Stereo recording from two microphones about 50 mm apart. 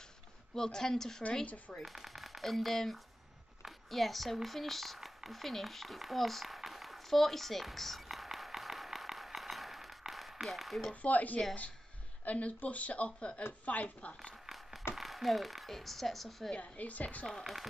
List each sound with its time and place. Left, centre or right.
0.6 s speech: centre
1.4 s speech: left
1.8 s speech: centre
8.5 s a sound: centre
10.4 s speech: centre
11.0 s speech: left
14.5 s a sound: centre
15.0 s speech: centre
16.5 s speech: left